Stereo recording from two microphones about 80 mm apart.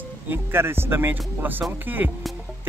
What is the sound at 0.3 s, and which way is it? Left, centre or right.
Speech, right.